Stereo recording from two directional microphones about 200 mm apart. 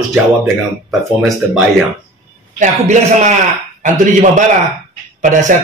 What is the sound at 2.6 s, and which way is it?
Speech, 35° right (ahead or behind).